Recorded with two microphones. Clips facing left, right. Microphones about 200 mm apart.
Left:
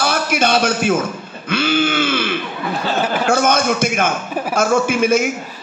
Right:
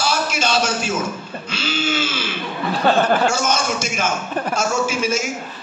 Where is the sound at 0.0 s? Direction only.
55° left (ahead or behind).